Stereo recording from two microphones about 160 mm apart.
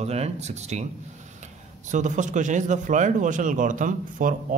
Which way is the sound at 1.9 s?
50° right (ahead or behind).